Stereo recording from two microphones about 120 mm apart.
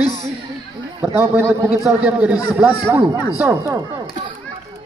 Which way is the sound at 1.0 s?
20° right (ahead or behind).